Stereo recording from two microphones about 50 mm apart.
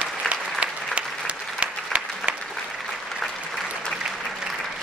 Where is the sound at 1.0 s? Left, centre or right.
Right.